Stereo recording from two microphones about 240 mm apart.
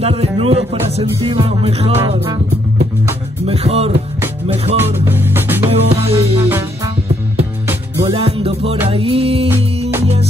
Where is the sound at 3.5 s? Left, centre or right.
Right.